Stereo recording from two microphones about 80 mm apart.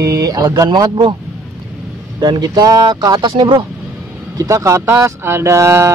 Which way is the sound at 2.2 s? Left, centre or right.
Right.